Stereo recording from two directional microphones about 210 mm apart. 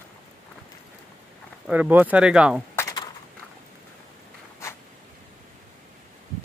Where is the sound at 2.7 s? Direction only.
15° left (ahead or behind).